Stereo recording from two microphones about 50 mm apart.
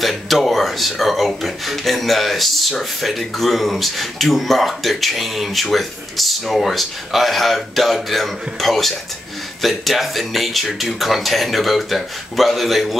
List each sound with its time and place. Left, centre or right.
0.0 s speech: centre